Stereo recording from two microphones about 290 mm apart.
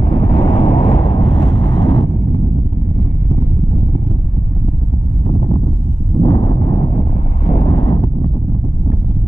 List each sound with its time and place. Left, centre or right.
0.0 s vehicle: left
6.2 s a sound: centre
7.4 s wind noise: left